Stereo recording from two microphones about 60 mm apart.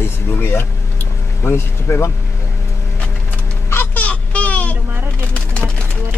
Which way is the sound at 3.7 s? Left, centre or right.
Left.